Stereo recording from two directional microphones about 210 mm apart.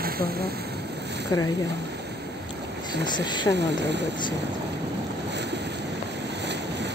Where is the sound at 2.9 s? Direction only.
55° right (ahead or behind).